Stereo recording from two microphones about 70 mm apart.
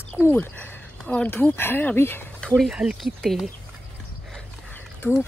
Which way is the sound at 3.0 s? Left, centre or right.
Centre.